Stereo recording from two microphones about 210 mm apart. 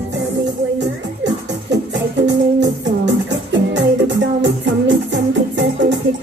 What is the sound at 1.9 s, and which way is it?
Music, 60° right (ahead or behind).